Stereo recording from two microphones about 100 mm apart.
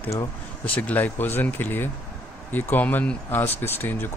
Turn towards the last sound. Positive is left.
turn(degrees=20)  # may be behind; listen again after turning